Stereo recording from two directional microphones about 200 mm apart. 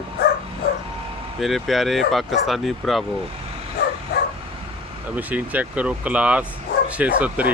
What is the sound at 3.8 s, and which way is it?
Bow-wow, 55° left (ahead or behind).